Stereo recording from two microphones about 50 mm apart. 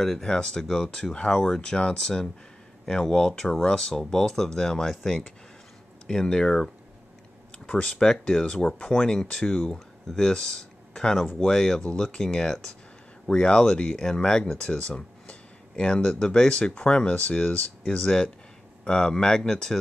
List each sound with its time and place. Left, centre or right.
0.0 s speech: centre